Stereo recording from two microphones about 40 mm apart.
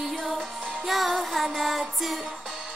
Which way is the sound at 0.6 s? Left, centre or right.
Right.